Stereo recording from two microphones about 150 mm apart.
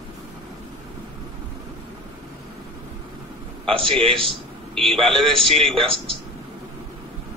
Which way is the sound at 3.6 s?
35° right (ahead or behind).